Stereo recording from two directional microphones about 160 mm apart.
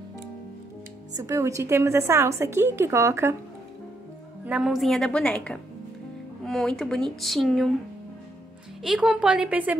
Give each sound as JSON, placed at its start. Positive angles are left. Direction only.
{"t": 1.1, "sound": "a woman's voice", "side_deg": -20}
{"t": 4.5, "sound": "speech", "side_deg": -5}
{"t": 8.8, "sound": "speech", "side_deg": -5}